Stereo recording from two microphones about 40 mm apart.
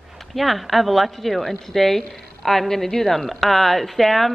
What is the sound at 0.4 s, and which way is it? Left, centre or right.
A woman's voice, centre.